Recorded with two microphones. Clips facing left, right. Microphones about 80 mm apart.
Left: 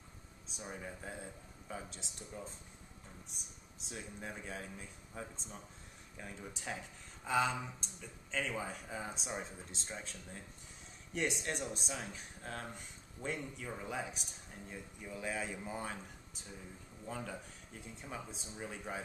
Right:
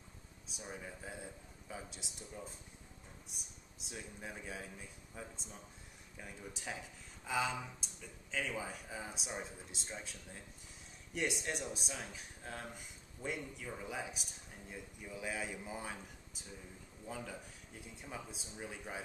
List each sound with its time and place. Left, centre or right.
0.5 s a man's voice: centre
11.1 s speech: centre